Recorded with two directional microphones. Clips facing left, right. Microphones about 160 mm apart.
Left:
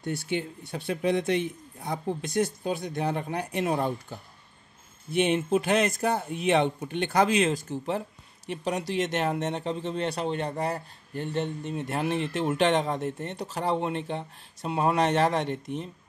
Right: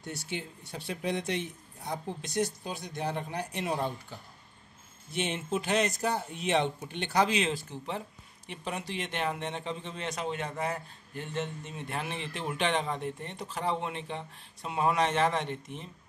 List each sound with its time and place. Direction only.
0.0 s speech: 60° left (ahead or behind)
5.1 s speech: 55° left (ahead or behind); by 15.6 s 40° left (ahead or behind)